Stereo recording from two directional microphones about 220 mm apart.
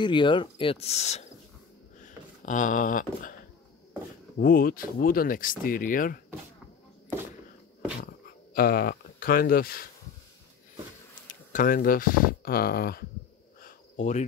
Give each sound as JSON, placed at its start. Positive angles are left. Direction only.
{"t": 0.0, "sound": "speech", "side_deg": 20}
{"t": 2.0, "sound": "a sound", "side_deg": 35}
{"t": 4.4, "sound": "speech", "side_deg": 40}
{"t": 8.5, "sound": "speech", "side_deg": 45}
{"t": 11.2, "sound": "speech", "side_deg": 40}
{"t": 13.6, "sound": "cricket", "side_deg": 35}